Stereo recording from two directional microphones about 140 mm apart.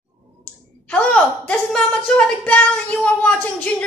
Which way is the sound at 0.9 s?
10° left (ahead or behind).